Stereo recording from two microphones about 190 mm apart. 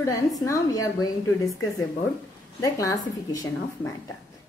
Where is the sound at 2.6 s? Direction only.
15° left (ahead or behind).